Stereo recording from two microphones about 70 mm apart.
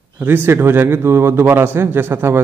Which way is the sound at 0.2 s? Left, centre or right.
Right.